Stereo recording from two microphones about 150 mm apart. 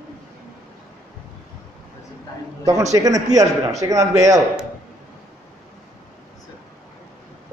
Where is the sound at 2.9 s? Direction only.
25° right (ahead or behind).